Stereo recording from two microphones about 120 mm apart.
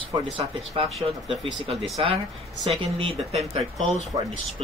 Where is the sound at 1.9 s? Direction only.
55° right (ahead or behind).